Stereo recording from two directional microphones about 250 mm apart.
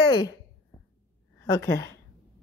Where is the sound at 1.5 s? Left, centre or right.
Centre.